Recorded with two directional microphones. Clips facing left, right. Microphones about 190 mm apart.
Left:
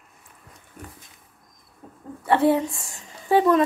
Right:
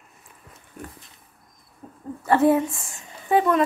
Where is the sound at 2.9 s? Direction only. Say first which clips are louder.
Left 1 dB; 30° left (ahead or behind).